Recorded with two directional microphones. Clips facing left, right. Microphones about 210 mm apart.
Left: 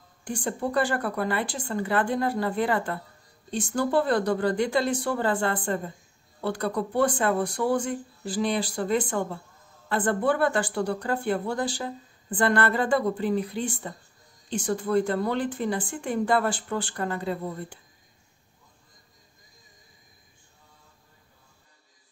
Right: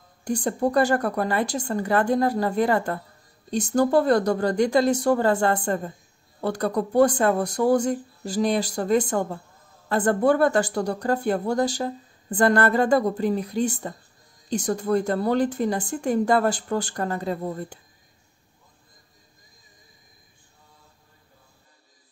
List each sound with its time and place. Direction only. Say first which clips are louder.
0.2 s speech: right 6 dB; 40° right (ahead or behind)